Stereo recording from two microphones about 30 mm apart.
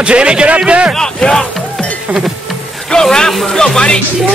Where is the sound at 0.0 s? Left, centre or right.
Right.